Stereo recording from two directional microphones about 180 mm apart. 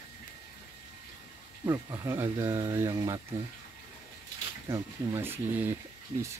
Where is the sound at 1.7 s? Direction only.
15° right (ahead or behind).